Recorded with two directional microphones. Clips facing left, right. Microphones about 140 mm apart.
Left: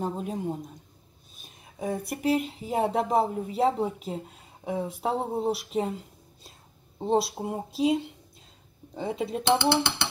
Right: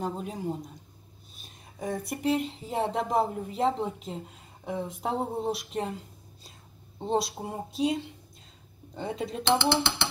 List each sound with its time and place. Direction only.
0.0 s speech: 5° left (ahead or behind)